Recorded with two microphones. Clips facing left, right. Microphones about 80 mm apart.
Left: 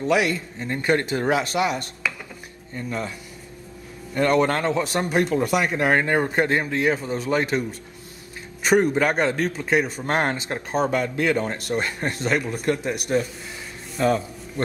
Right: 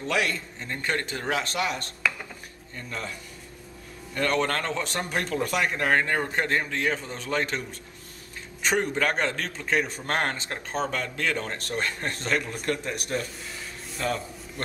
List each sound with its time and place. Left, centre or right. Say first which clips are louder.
0.0 s speech: left 6 dB; centre
4.1 s speech: left 6 dB; centre
8.6 s a man's voice: left 6 dB; centre